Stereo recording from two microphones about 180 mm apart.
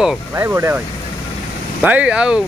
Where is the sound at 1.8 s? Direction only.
10° right (ahead or behind).